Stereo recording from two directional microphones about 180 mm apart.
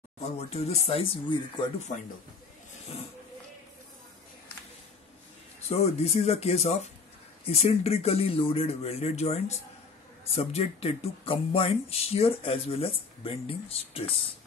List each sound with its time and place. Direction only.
0.2 s speech: 35° left (ahead or behind)
1.9 s a man's voice: 45° left (ahead or behind)
5.6 s speech: 35° left (ahead or behind)